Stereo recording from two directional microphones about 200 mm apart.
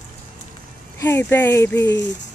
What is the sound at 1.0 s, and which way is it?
Speech, 15° left (ahead or behind).